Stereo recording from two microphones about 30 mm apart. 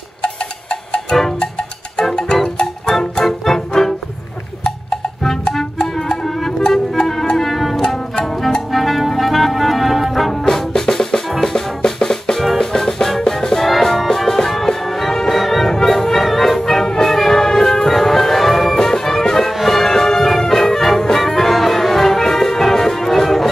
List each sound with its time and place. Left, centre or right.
0.2 s a sound: left
1.4 s music: left
3.3 s music: centre
5.5 s music: centre
7.4 s music: centre
10.8 s music: centre
15.7 s music: centre
18.8 s music: centre